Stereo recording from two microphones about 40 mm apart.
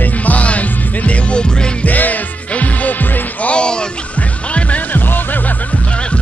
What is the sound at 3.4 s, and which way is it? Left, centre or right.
Music, left.